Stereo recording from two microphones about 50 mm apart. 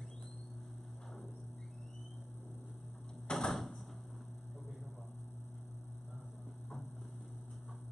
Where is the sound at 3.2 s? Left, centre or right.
Centre.